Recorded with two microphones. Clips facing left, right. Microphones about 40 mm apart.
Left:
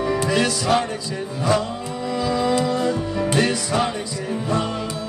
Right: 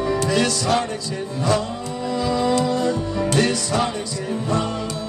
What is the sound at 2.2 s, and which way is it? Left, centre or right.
Music, centre.